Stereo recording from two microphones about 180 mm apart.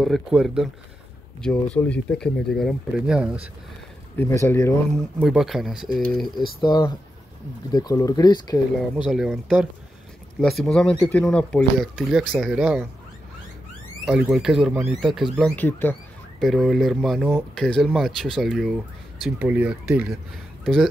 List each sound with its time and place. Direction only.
0.0 s speech: centre (ahead or behind)
4.2 s speech: 10° left (ahead or behind)
4.9 s speech: centre (ahead or behind)
6.6 s speech: 25° left (ahead or behind)
8.9 s speech: 5° right (ahead or behind)
14.0 s speech: 5° right (ahead or behind)